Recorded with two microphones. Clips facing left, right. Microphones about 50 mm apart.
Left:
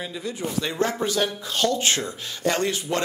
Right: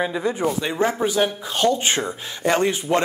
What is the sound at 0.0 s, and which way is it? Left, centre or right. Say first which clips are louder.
Speech: right 8 dB; right.